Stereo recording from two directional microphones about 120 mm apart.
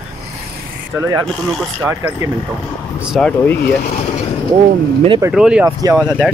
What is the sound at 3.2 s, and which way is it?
Speech, 15° left (ahead or behind).